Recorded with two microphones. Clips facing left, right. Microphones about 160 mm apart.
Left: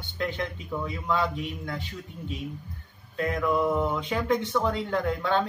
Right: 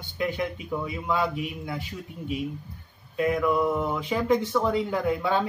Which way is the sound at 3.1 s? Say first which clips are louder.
Right 3 dB; 5° right (ahead or behind).